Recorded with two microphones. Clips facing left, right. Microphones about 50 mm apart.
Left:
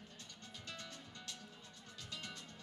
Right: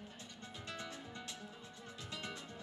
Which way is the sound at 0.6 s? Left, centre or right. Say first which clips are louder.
Right 5 dB; centre.